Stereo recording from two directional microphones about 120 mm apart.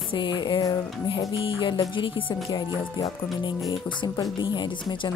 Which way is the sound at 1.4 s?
50° left (ahead or behind).